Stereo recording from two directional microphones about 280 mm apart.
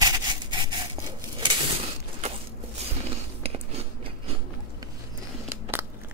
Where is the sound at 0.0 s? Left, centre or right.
Centre.